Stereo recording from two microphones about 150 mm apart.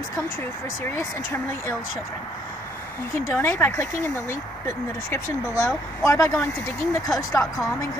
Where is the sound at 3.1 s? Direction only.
15° left (ahead or behind).